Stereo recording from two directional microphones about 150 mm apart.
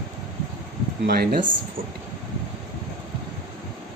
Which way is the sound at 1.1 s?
85° right.